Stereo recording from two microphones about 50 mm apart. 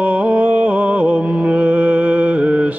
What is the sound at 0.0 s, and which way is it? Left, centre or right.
Music, right.